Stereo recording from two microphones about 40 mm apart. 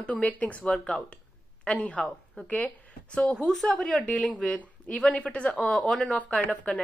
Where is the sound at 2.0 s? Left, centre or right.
Centre.